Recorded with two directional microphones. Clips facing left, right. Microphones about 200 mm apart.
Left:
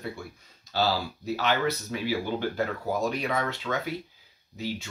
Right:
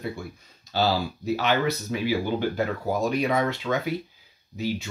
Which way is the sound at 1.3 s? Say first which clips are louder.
Right 2 dB; 15° right (ahead or behind).